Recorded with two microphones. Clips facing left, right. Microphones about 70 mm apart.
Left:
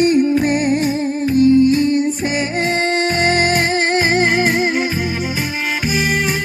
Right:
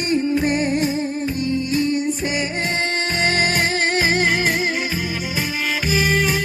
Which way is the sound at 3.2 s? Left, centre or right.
Centre.